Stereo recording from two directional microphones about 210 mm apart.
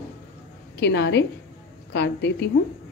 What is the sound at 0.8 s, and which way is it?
A woman's voice, 55° left (ahead or behind).